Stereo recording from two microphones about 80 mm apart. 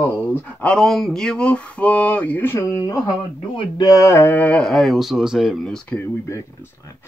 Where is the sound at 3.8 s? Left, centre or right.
Left.